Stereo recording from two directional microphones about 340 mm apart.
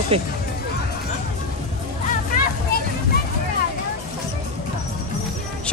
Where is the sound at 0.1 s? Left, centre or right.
Centre.